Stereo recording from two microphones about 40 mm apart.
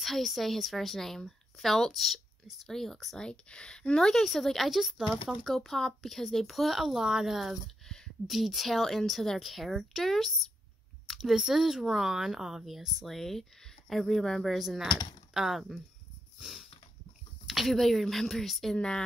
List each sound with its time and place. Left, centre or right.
0.0 s a woman's voice: centre
3.2 s speech: left
4.0 s speech: centre
4.6 s speech: centre
9.5 s speech: centre
11.1 s speech: centre
16.3 s dog: centre
17.5 s speech: centre
18.8 s speech: left